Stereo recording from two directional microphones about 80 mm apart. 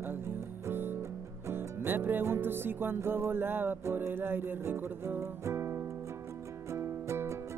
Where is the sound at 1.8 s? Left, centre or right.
Right.